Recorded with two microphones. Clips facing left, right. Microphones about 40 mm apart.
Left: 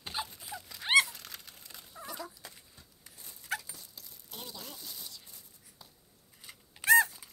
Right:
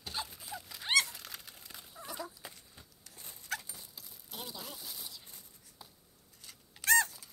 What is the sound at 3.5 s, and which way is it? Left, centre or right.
Dog, centre.